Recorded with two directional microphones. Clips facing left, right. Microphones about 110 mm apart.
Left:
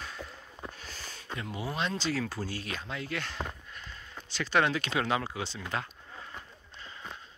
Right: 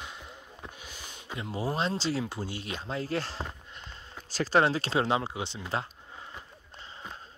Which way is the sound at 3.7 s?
25° right (ahead or behind).